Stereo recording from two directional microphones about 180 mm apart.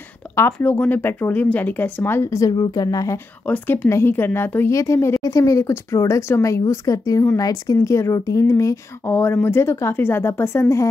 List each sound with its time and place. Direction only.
0.4 s speech: 15° left (ahead or behind)